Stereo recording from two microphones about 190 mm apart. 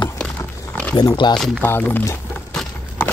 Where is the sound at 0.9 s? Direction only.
25° left (ahead or behind).